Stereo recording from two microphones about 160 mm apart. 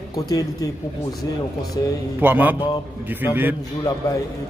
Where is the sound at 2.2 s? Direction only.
10° right (ahead or behind).